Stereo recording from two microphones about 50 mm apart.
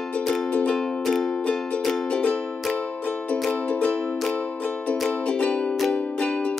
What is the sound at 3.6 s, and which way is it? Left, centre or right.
Music, left.